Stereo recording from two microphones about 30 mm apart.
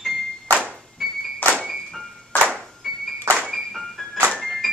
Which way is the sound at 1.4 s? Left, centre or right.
Left.